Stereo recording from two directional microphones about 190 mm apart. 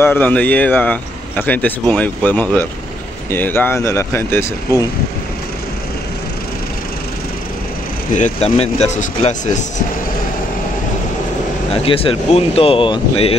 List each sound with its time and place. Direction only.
0.0 s speech: 10° left (ahead or behind)
8.1 s speech: 35° left (ahead or behind)
11.8 s speech: 30° left (ahead or behind)